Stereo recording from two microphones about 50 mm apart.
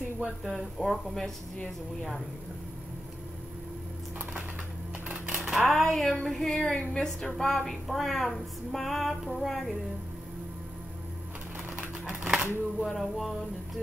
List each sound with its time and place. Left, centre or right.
0.5 s female singing: centre
5.4 s a sound: centre
6.2 s music: centre
6.6 s a woman's voice: centre
7.2 s female singing: centre
12.2 s shuffling cards: centre
12.8 s music: centre